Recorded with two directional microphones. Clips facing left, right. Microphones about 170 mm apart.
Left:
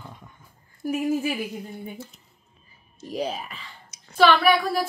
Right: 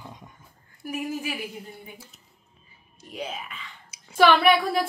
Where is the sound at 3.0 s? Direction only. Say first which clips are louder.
Left 6 dB; 35° left (ahead or behind).